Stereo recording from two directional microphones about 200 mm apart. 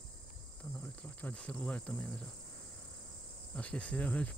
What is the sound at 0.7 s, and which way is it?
Cricket, 5° left (ahead or behind).